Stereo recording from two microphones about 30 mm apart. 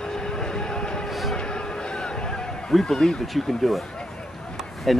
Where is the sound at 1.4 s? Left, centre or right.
Left.